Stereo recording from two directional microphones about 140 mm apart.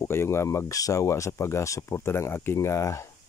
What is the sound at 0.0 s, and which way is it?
Speech, 20° left (ahead or behind).